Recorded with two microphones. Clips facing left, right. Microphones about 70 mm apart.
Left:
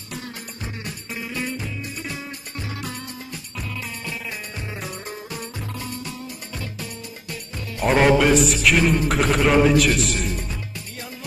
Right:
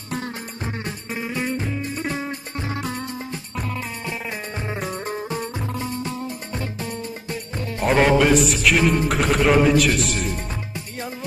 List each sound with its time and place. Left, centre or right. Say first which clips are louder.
0.1 s music: right 5 dB; right
7.8 s music: even; centre